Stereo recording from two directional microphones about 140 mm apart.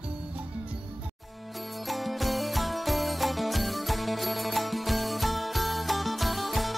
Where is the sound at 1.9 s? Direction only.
Centre (ahead or behind).